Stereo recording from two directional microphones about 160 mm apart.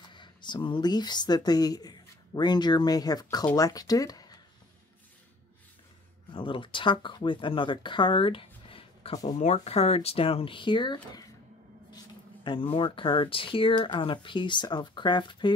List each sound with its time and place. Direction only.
0.0 s speech: 30° left (ahead or behind)
6.3 s speech: 30° left (ahead or behind)
12.4 s speech: 35° left (ahead or behind)